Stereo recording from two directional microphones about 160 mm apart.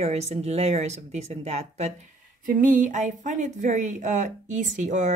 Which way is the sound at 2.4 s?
55° right (ahead or behind).